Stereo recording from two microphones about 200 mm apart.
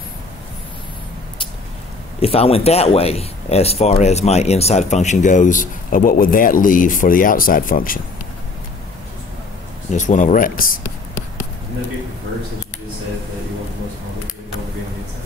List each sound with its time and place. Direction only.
2.1 s speech: 30° left (ahead or behind)
9.8 s speech: 40° left (ahead or behind)